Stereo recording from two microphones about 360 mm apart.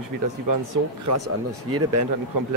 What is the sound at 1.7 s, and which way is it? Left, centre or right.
Speech, right.